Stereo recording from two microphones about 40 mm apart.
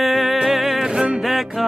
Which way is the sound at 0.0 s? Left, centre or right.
Centre.